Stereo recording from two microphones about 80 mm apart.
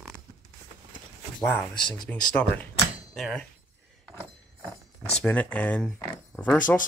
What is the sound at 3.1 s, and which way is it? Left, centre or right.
Speech, centre.